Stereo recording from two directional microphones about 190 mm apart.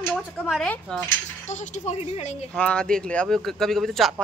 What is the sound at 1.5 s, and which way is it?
Speech, 40° left (ahead or behind).